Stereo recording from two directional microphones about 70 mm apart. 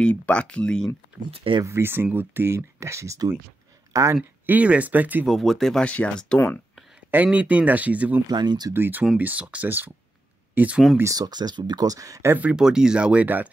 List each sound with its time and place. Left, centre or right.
0.0 s speech: centre
1.6 s speech: right
4.5 s speech: right
5.2 s speech: centre
5.9 s speech: centre
7.2 s speech: centre
8.3 s speech: right
8.7 s speech: right
9.2 s speech: centre
11.1 s speech: right
12.4 s speech: centre